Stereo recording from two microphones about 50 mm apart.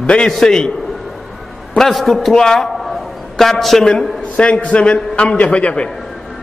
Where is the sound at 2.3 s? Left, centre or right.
Centre.